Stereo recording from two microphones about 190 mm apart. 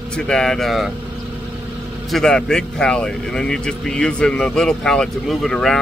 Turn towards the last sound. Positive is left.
turn(degrees=5)  # may be behind; listen again after turning